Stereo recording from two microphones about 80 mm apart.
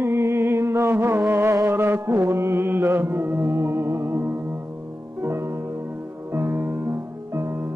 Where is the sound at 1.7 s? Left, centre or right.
Right.